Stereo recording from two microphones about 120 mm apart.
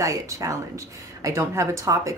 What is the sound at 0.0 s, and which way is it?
A woman's voice, 25° right (ahead or behind).